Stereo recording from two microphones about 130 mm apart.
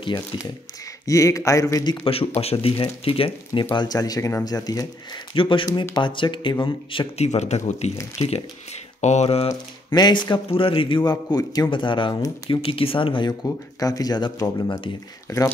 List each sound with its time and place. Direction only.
1.0 s speech: 25° left (ahead or behind)
2.0 s speech: 50° left (ahead or behind)
3.7 s speech: 30° left (ahead or behind)
7.2 s speech: 60° left (ahead or behind)
9.9 s speech: 30° left (ahead or behind)
11.1 s speech: 30° left (ahead or behind)
15.2 s speech: 20° left (ahead or behind)